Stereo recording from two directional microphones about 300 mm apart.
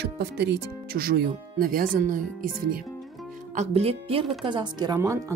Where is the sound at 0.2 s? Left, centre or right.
Right.